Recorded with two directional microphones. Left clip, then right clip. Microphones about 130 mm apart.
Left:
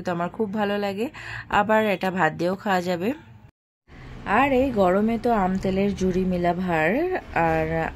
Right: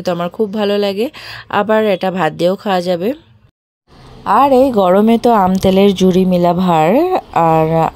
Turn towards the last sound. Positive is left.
turn(degrees=-60)  # may be behind; listen again after turning